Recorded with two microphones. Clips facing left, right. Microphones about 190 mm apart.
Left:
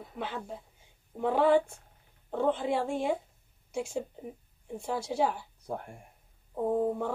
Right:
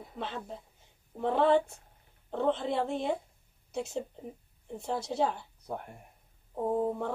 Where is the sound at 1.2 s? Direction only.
10° left (ahead or behind).